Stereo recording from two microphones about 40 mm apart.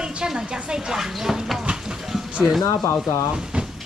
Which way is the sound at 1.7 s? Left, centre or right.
Right.